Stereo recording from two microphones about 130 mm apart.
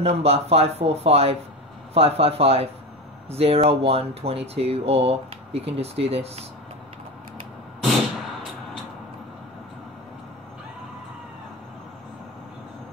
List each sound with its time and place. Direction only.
0.0 s speech: 50° right (ahead or behind)